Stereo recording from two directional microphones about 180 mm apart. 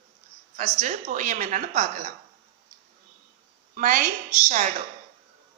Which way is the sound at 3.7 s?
50° right (ahead or behind).